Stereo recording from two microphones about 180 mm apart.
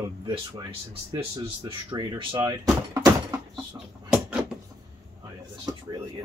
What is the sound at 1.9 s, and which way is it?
Speech, 25° right (ahead or behind).